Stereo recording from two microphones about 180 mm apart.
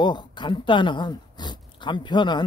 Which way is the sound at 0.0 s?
25° left (ahead or behind).